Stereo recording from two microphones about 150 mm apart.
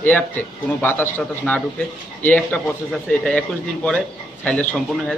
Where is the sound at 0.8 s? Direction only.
10° left (ahead or behind).